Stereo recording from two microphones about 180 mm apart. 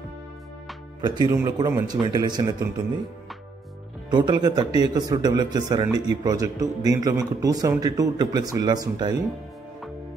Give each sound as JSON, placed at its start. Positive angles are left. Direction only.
{"t": 1.0, "sound": "a man's voice", "side_deg": -25}
{"t": 4.1, "sound": "a man's voice", "side_deg": -25}